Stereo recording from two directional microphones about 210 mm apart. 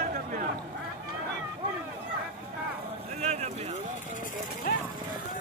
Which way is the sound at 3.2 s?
30° right (ahead or behind).